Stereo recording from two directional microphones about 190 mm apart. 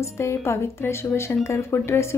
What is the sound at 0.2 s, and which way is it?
Speech, 15° left (ahead or behind).